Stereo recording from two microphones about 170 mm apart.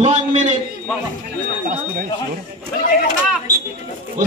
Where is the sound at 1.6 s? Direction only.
55° right (ahead or behind).